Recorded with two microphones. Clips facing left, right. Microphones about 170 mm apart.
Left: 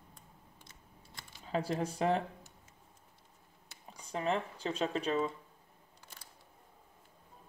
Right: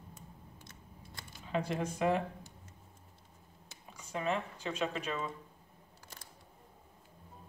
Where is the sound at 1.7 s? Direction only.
35° left (ahead or behind).